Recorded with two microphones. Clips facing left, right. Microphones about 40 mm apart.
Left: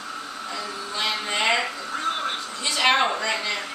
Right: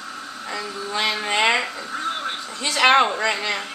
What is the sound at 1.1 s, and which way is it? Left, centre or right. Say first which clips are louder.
Speech: right 4 dB; right.